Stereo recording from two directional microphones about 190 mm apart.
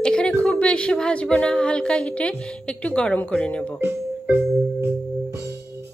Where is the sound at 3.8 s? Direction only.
15° right (ahead or behind).